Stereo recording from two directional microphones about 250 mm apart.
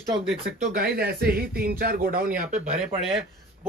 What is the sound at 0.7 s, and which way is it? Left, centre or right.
Speech, right.